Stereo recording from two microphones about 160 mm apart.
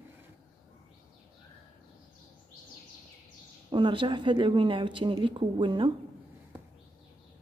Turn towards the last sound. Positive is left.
turn(degrees=-30)  # may be behind; listen again after turning